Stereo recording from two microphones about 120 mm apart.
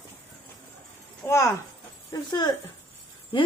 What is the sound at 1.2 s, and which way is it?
Speech, 25° left (ahead or behind).